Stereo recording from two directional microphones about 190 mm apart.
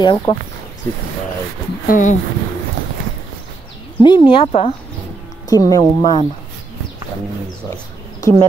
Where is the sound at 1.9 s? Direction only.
40° left (ahead or behind).